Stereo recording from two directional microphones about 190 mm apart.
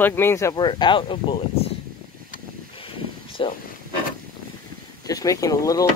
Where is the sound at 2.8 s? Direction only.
30° left (ahead or behind).